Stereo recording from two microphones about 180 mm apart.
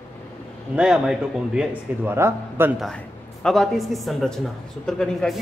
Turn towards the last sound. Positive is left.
turn(degrees=5)  # may be behind; listen again after turning